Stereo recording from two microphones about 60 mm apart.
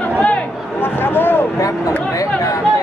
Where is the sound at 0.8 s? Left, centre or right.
Left.